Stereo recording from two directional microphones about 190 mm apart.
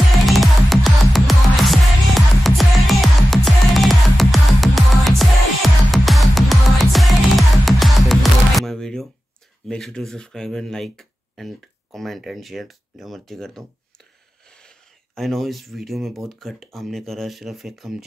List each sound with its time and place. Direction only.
0.3 s music: centre (ahead or behind)
9.7 s speech: 5° left (ahead or behind)